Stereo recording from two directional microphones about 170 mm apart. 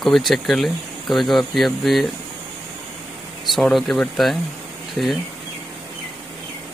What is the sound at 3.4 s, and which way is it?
Speech, centre (ahead or behind).